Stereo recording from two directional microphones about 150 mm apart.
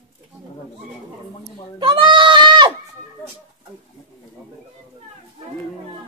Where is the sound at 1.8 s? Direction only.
35° right (ahead or behind).